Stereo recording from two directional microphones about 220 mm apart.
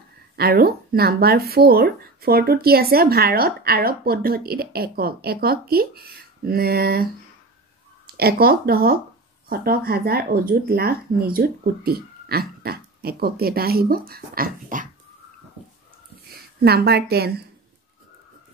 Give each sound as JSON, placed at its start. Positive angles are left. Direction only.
{"t": 0.4, "sound": "speech", "side_deg": -45}
{"t": 8.1, "sound": "speech", "side_deg": -45}
{"t": 16.3, "sound": "a woman's voice", "side_deg": -45}